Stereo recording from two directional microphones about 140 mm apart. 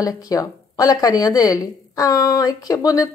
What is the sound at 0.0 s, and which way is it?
Speech, 25° left (ahead or behind).